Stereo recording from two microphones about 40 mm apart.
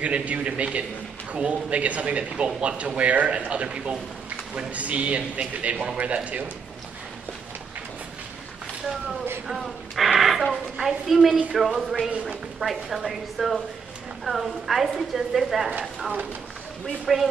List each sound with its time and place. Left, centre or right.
0.0 s speech: right
4.6 s speech: right
9.5 s a sound: centre
10.9 s a woman's voice: centre